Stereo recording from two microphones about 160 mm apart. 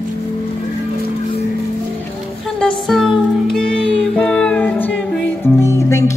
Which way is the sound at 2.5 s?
5° left (ahead or behind).